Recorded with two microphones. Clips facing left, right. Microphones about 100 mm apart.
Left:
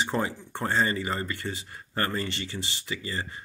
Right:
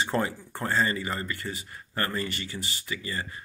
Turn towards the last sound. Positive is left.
turn(degrees=25)  # may be behind; listen again after turning